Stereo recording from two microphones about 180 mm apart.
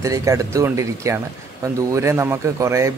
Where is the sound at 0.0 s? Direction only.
15° right (ahead or behind).